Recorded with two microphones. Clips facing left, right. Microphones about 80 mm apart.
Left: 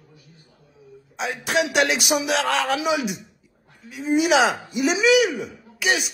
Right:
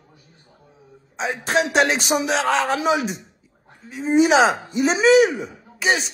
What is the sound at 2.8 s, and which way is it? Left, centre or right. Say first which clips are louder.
A man's voice: right 3 dB; right.